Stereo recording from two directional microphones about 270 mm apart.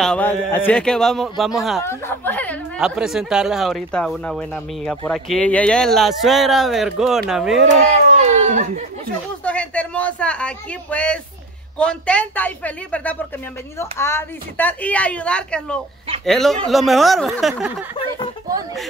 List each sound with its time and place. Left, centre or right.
0.0 s speech: centre
8.2 s a sound: right
9.4 s speech: centre